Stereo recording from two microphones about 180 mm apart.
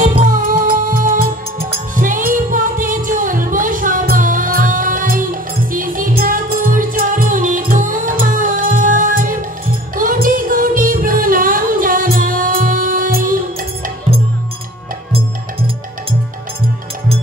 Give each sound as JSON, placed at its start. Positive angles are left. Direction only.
{"t": 0.2, "sound": "music", "side_deg": -45}
{"t": 1.2, "sound": "music", "side_deg": -30}
{"t": 2.0, "sound": "music", "side_deg": -50}
{"t": 15.1, "sound": "music", "side_deg": -30}